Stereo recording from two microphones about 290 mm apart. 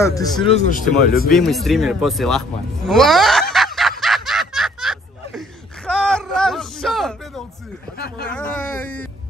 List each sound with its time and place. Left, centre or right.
0.0 s speech: centre; by 1.3 s left
1.3 s speech: centre
2.9 s snicker: centre
5.9 s a sound: centre
8.3 s speech: centre